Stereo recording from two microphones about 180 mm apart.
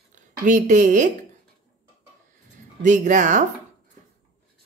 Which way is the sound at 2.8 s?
45° right (ahead or behind).